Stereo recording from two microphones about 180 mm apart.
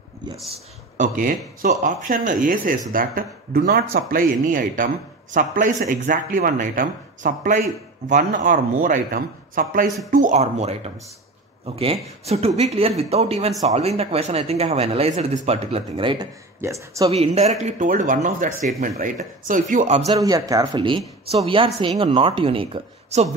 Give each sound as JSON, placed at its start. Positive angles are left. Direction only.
{"t": 0.9, "sound": "speech", "side_deg": -50}
{"t": 16.6, "sound": "speech", "side_deg": -15}
{"t": 17.1, "sound": "speech", "side_deg": -35}
{"t": 20.1, "sound": "speech", "side_deg": -20}